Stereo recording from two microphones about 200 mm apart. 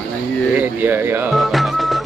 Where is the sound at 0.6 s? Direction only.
10° right (ahead or behind).